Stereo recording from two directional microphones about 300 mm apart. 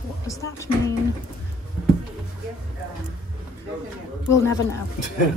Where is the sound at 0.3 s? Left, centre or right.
Centre.